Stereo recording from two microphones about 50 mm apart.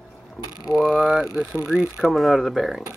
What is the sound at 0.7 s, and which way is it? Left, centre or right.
Speech, right.